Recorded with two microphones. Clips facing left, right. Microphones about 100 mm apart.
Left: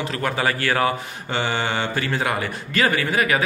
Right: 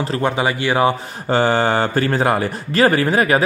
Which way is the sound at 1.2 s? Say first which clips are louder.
Right 8 dB; 40° right (ahead or behind).